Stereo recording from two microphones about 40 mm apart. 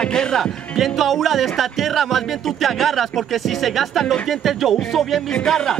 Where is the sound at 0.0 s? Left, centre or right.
Centre.